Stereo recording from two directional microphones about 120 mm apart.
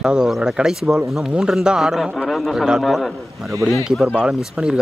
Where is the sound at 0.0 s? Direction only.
5° right (ahead or behind).